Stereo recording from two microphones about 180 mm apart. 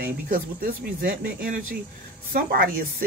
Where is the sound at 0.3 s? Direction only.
55° right (ahead or behind).